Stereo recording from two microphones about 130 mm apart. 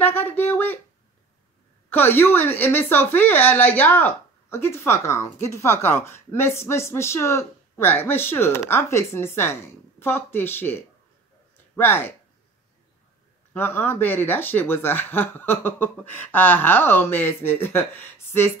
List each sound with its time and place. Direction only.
0.0 s a sound: 15° left (ahead or behind)
1.9 s speech: 15° left (ahead or behind)
13.5 s speech: 15° left (ahead or behind)